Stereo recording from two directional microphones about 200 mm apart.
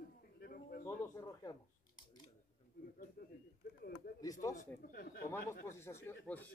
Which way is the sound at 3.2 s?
50° left (ahead or behind).